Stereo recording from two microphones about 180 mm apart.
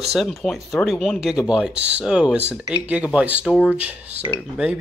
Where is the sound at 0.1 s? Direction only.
Centre (ahead or behind).